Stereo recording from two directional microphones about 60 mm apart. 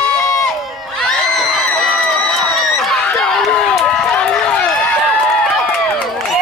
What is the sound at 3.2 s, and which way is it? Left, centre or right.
Run, centre.